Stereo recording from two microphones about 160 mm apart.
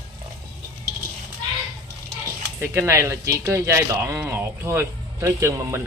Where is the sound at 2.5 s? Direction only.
15° right (ahead or behind).